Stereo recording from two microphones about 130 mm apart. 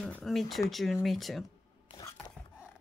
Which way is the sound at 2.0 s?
25° left (ahead or behind).